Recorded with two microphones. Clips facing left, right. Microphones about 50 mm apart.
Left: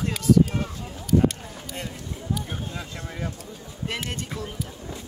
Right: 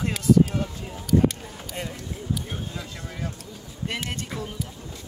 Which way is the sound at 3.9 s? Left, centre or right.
Centre.